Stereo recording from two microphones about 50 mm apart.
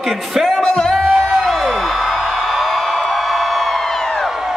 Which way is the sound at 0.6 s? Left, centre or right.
Centre.